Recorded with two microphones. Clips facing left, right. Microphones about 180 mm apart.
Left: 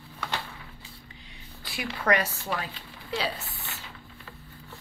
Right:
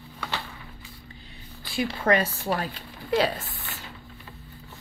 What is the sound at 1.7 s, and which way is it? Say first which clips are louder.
Speech: right 3 dB; 25° right (ahead or behind).